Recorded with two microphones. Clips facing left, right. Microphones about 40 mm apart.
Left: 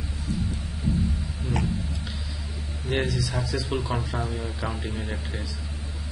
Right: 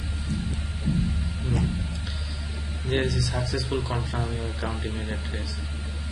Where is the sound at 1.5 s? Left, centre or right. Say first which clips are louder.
Even; right.